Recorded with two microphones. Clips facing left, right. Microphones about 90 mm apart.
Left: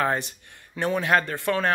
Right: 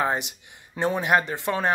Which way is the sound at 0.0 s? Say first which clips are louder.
Even; 15° right (ahead or behind).